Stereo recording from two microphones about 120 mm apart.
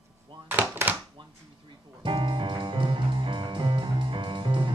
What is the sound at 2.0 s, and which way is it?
Music, 45° right (ahead or behind).